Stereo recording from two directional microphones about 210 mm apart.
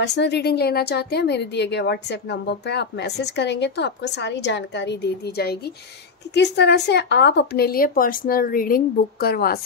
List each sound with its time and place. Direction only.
0.0 s speech: 55° left (ahead or behind)